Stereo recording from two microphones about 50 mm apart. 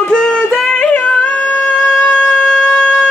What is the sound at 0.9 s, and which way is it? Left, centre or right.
Music, left.